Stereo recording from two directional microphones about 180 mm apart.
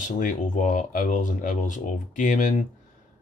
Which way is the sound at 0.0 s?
45° left (ahead or behind).